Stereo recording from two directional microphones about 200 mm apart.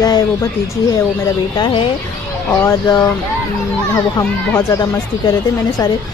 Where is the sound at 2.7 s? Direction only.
20° left (ahead or behind).